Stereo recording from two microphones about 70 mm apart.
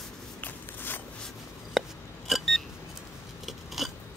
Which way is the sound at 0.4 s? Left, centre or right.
Left.